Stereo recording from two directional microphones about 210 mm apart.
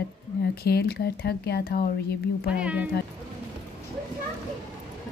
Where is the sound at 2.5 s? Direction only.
5° right (ahead or behind).